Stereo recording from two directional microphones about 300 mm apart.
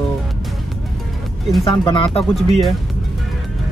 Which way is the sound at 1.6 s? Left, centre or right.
Centre.